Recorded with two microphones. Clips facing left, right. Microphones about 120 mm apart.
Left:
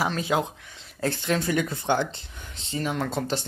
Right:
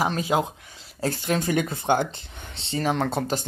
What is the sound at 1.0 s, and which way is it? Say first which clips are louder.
Speech: even; 40° right (ahead or behind).